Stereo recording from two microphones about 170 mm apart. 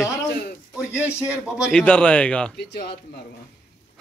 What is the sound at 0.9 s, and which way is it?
Speech, 10° right (ahead or behind).